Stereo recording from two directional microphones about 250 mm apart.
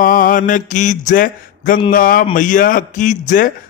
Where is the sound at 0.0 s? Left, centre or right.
Left.